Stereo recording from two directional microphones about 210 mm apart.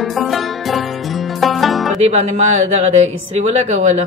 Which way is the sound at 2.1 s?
30° right (ahead or behind).